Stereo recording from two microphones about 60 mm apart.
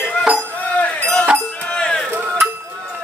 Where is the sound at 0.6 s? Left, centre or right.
Left.